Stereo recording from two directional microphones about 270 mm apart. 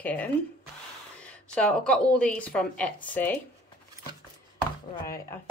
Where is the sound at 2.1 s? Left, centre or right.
Centre.